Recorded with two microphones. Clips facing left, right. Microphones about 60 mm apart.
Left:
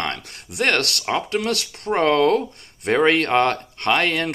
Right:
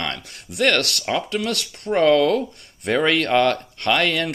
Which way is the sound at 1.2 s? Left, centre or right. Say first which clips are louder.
Left 2 dB; left.